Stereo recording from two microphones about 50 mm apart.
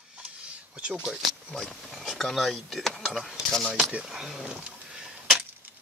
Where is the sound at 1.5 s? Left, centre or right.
Centre.